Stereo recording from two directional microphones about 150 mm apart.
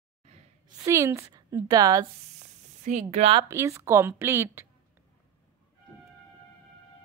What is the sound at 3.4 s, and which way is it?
A woman's voice, 20° right (ahead or behind).